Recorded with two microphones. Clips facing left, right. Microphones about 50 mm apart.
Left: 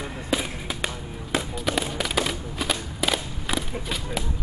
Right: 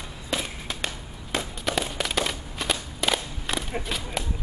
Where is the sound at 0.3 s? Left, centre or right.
Centre.